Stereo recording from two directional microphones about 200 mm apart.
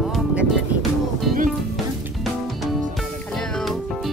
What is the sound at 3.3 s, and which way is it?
Music, centre (ahead or behind).